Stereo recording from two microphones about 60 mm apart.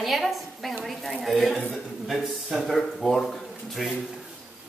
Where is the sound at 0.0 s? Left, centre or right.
Centre.